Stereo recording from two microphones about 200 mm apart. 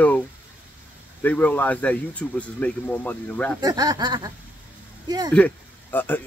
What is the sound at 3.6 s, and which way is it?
Speech, 20° right (ahead or behind).